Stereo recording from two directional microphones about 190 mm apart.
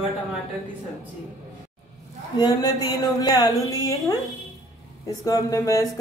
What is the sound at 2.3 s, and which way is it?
A woman's voice, 20° left (ahead or behind).